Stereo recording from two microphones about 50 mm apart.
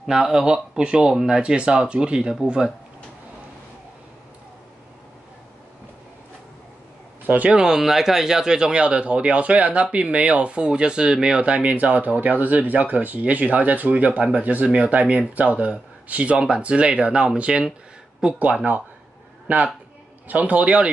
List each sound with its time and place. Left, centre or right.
0.0 s speech: centre
7.2 s speech: right
7.5 s speech: centre
11.7 s speech: right; by 18.4 s centre
19.4 s a man's voice: right